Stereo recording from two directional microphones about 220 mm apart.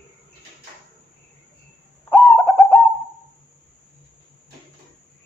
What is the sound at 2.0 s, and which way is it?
Bird, 15° left (ahead or behind).